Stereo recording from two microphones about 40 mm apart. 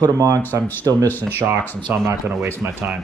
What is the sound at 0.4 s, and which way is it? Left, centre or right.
Speech, left.